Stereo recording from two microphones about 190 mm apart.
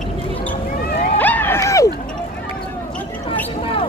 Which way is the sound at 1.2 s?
10° left (ahead or behind).